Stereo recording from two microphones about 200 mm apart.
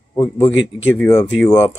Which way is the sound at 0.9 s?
10° left (ahead or behind).